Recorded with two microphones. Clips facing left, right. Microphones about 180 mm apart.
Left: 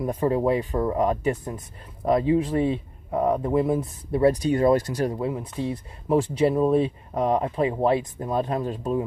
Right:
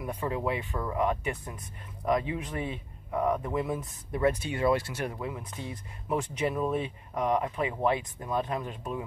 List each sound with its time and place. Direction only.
0.0 s speech: 35° left (ahead or behind)